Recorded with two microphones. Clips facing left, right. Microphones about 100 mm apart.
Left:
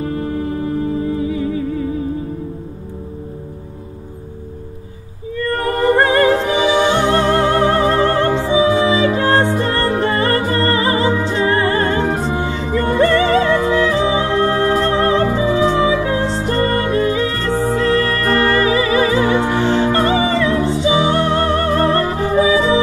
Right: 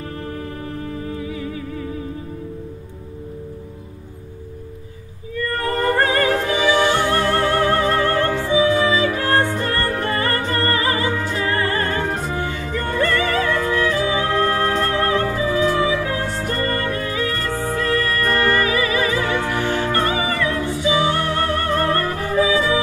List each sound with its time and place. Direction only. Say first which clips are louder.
0.0 s music: left 8 dB; 25° left (ahead or behind)
5.4 s music: left 4 dB; 25° left (ahead or behind)